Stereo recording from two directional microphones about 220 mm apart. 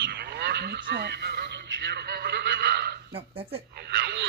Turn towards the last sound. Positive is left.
turn(degrees=-50)  # may be behind; listen again after turning